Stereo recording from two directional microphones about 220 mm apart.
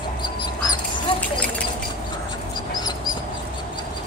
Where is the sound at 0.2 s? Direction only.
20° left (ahead or behind).